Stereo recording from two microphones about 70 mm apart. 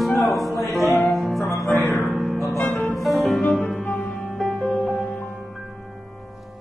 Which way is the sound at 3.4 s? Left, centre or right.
Centre.